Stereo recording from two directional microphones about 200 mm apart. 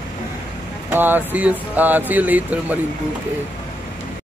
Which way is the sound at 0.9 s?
10° right (ahead or behind).